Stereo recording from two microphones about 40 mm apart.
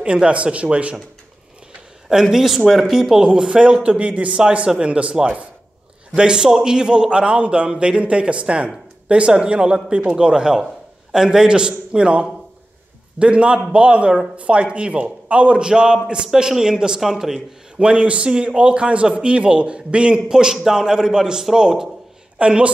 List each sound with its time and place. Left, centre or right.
0.0 s speech: right
2.2 s speech: centre
3.0 s speech: centre
3.3 s a man's voice: right
6.1 s a man's voice: right
15.6 s a man's voice: centre
17.7 s a man's voice: right
22.4 s a man's voice: right